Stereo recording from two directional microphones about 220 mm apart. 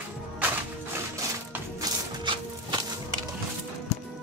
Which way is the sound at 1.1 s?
15° right (ahead or behind).